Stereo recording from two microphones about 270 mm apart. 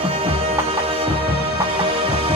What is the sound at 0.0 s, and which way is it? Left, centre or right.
Music, right.